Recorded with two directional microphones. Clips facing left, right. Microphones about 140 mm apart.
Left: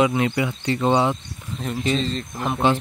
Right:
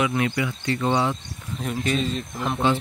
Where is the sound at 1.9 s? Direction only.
10° right (ahead or behind).